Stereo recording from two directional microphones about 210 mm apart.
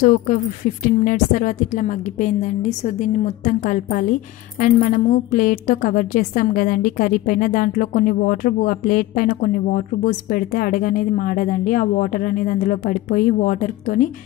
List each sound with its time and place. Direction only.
0.0 s a woman's voice: 35° left (ahead or behind)